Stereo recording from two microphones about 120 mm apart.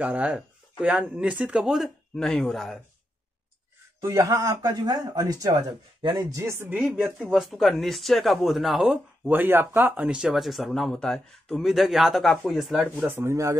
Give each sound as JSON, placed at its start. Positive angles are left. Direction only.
{"t": 0.0, "sound": "speech", "side_deg": -10}
{"t": 4.0, "sound": "speech", "side_deg": -25}
{"t": 6.8, "sound": "speech", "side_deg": -5}
{"t": 9.3, "sound": "speech", "side_deg": -15}
{"t": 13.0, "sound": "speech", "side_deg": -20}